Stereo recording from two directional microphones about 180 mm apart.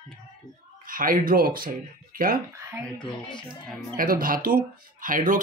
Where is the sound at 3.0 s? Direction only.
25° left (ahead or behind).